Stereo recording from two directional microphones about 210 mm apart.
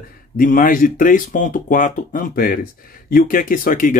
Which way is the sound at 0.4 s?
40° left (ahead or behind).